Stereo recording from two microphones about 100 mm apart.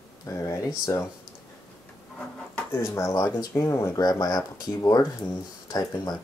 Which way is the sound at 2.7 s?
30° left (ahead or behind).